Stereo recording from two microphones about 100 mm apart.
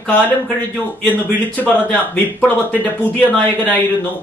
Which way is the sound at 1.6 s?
15° left (ahead or behind).